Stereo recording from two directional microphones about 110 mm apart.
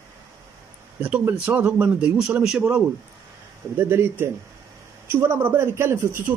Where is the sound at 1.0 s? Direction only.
15° right (ahead or behind).